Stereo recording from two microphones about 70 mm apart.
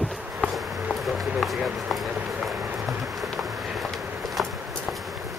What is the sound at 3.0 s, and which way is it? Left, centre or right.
Insect, centre.